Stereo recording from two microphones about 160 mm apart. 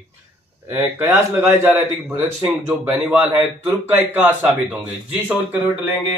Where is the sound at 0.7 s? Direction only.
15° right (ahead or behind).